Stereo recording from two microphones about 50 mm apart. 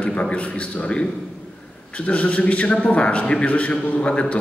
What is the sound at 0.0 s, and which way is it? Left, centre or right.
A man's voice, left.